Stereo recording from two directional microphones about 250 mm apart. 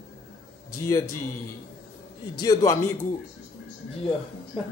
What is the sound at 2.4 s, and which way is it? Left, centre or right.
Speech, centre.